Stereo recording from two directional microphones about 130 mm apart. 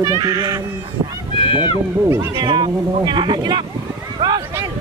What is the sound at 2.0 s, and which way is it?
Speech, 20° right (ahead or behind).